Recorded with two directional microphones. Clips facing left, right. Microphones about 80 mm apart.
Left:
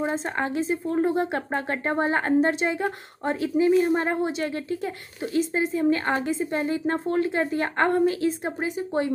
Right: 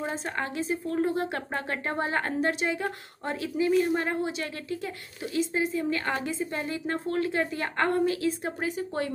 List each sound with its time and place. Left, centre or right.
0.0 s speech: left